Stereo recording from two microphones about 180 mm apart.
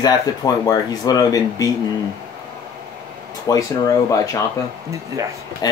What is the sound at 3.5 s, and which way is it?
Speech, 20° left (ahead or behind).